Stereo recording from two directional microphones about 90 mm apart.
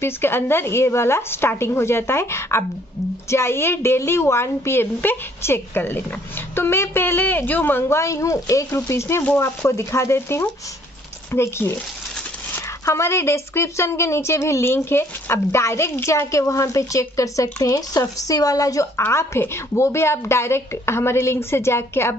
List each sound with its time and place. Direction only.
0.0 s a woman's voice: 25° left (ahead or behind)
12.8 s a woman's voice: 30° left (ahead or behind)